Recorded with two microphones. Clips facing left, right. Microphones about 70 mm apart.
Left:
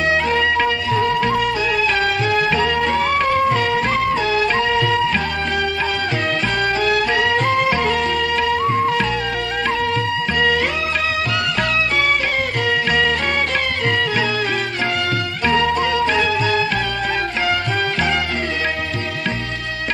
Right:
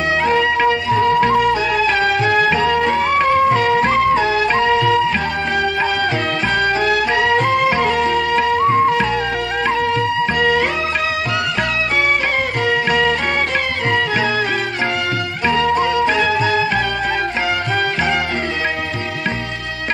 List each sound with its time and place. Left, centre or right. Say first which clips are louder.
0.4 s music: right 2 dB; centre
1.2 s music: right 4 dB; right
2.0 s music: right 3 dB; right
6.9 s music: right 2 dB; centre
15.4 s music: right 2 dB; centre